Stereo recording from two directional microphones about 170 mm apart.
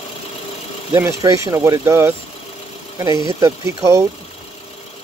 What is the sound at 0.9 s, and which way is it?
Speech, 15° right (ahead or behind).